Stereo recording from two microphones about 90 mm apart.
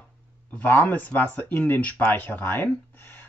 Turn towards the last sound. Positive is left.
turn(degrees=20)  # may be behind; listen again after turning